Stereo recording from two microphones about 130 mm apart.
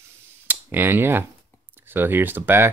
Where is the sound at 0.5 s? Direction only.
15° right (ahead or behind).